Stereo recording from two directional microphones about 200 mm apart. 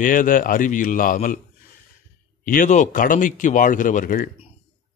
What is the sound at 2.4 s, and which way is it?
A man's voice, 40° left (ahead or behind).